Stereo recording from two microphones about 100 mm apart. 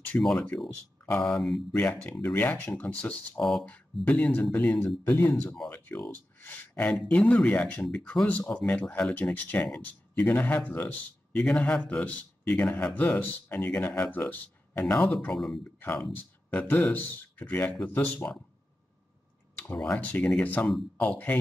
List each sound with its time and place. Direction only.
0.2 s speech: 5° left (ahead or behind)
1.8 s speech: 15° left (ahead or behind)
15.3 s speech: 5° left (ahead or behind)
15.6 s speech: 20° left (ahead or behind)
19.6 s speech: 20° left (ahead or behind)